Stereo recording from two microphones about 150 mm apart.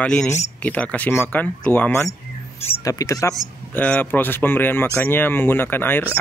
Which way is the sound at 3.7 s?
10° left (ahead or behind).